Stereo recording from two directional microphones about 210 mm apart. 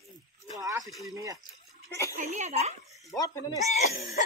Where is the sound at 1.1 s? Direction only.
15° right (ahead or behind).